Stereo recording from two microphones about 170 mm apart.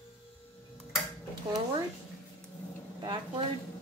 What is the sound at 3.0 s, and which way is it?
Speech, 25° right (ahead or behind).